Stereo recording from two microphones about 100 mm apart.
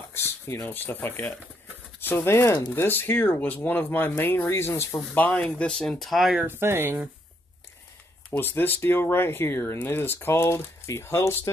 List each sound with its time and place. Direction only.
0.1 s speech: 25° left (ahead or behind); by 6.4 s centre (ahead or behind)
6.4 s speech: 25° right (ahead or behind)
8.3 s speech: 20° left (ahead or behind)